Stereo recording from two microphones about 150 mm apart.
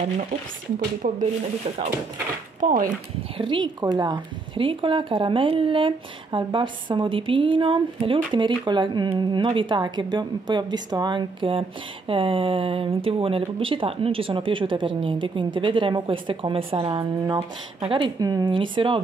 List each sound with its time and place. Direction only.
1.0 s speech: 50° right (ahead or behind)
2.6 s speech: 60° right (ahead or behind)
3.3 s speech: 30° right (ahead or behind)
17.2 s speech: 25° right (ahead or behind)
17.7 s speech: 35° right (ahead or behind)